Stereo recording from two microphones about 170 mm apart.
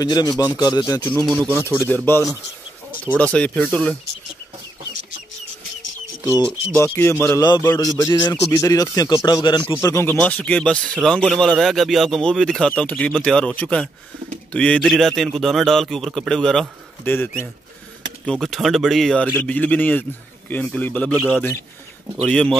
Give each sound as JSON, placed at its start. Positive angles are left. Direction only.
{"t": 0.0, "sound": "speech", "side_deg": 25}
{"t": 1.5, "sound": "speech", "side_deg": -10}
{"t": 1.8, "sound": "a man's voice", "side_deg": 10}
{"t": 6.8, "sound": "a man's voice", "side_deg": 15}
{"t": 9.8, "sound": "a man's voice", "side_deg": 15}